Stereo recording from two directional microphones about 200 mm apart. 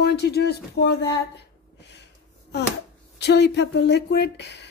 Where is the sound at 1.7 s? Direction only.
60° left (ahead or behind).